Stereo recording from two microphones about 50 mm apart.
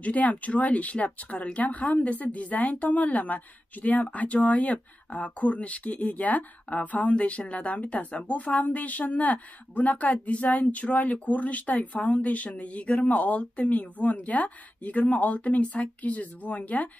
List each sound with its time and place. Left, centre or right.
0.0 s a woman's voice: left